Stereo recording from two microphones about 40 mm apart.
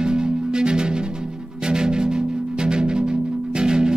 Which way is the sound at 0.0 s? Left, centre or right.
Centre.